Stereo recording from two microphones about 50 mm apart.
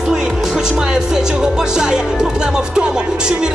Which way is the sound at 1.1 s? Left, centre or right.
Centre.